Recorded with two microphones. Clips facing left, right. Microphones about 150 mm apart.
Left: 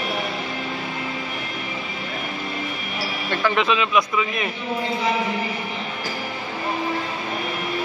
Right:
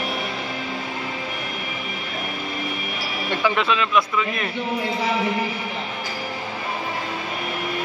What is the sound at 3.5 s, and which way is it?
Speech, centre (ahead or behind).